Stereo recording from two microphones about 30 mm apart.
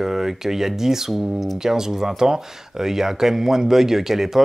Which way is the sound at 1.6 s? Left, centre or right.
Centre.